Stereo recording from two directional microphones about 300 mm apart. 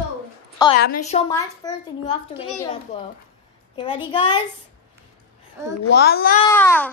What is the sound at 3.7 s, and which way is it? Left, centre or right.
Speech, centre.